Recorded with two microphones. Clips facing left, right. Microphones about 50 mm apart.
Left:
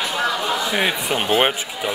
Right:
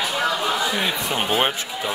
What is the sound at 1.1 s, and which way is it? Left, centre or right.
Speech, centre.